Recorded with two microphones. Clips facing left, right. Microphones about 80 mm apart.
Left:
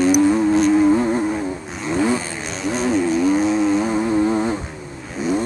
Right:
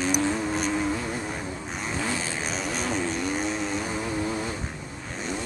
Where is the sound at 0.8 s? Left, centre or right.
Left.